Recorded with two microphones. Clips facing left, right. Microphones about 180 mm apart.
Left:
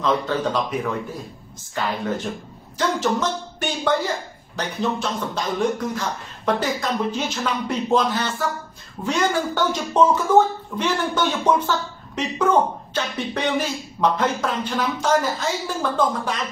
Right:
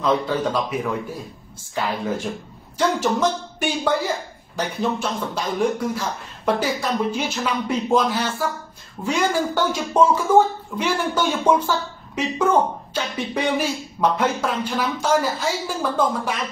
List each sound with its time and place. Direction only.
0.0 s speech: 10° right (ahead or behind)